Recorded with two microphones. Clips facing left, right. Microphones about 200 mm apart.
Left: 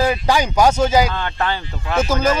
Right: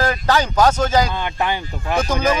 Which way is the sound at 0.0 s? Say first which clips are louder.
Left 1 dB; 10° left (ahead or behind).